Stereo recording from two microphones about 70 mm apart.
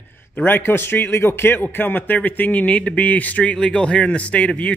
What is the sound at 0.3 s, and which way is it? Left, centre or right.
A man's voice, left.